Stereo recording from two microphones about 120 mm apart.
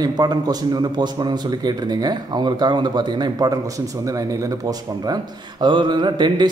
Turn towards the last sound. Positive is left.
turn(degrees=-40)  # may be behind; listen again after turning